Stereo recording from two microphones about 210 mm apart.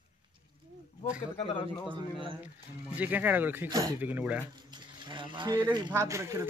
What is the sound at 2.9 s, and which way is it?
Speech, 5° right (ahead or behind).